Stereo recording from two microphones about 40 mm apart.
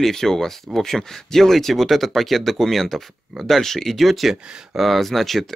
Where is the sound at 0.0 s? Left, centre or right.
Centre.